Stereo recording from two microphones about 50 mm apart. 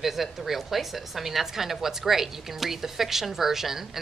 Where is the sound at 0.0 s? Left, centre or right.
Centre.